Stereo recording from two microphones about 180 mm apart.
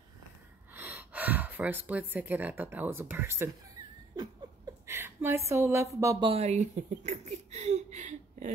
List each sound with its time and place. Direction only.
0.7 s speech: 10° right (ahead or behind)
4.8 s a woman's voice: 15° right (ahead or behind)
6.2 s speech: 35° right (ahead or behind)